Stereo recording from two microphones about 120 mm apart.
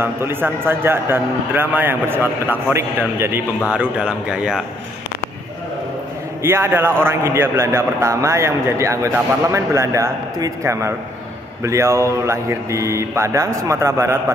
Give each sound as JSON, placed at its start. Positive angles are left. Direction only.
{"t": 0.0, "sound": "a man's voice", "side_deg": -20}
{"t": 6.4, "sound": "a man's voice", "side_deg": -20}